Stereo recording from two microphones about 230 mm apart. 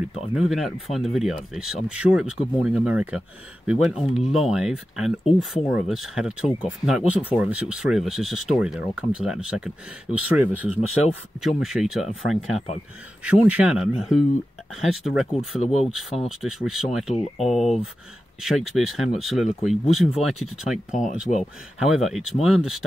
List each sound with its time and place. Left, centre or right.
0.3 s speech: centre
15.6 s speech: left
15.9 s speech: centre
17.1 s speech: left
17.6 s speech: centre
21.4 s speech: centre